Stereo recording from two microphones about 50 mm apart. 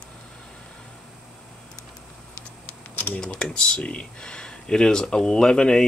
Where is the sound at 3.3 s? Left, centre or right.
Centre.